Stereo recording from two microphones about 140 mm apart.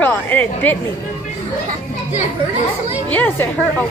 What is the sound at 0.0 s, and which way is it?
Chatter, 15° left (ahead or behind).